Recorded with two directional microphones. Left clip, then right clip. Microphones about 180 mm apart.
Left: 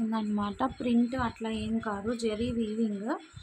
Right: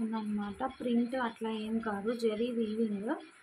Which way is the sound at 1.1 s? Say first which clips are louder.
Left 2 dB; 15° left (ahead or behind).